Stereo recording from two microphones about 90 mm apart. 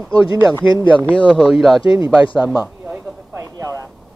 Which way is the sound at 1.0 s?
10° left (ahead or behind).